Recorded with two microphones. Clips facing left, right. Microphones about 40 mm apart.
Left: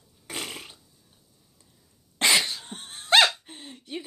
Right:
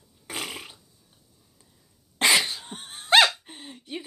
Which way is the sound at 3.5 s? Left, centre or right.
Centre.